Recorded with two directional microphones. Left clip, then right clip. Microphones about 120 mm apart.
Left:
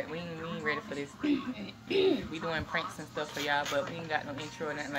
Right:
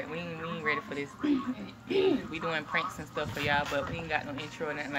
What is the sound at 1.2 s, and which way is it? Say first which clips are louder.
Speech: right 1 dB; 15° left (ahead or behind).